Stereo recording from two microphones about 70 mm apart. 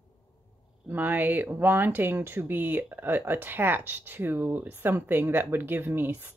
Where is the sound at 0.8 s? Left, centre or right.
Right.